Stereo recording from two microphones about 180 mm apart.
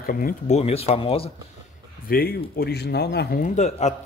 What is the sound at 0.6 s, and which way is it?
Speech, 35° left (ahead or behind).